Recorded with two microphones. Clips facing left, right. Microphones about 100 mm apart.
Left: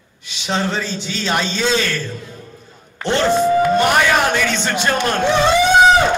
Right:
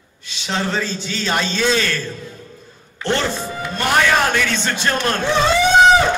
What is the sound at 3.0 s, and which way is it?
A man's voice, 15° left (ahead or behind).